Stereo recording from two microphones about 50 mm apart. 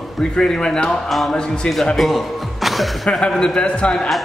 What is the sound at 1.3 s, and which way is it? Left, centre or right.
Speech, centre.